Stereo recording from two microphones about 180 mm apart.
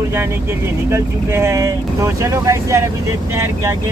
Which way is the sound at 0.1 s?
15° right (ahead or behind).